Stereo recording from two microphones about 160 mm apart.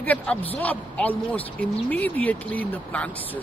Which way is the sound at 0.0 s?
10° left (ahead or behind).